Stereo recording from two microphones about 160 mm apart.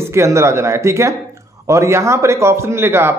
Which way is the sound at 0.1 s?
15° right (ahead or behind).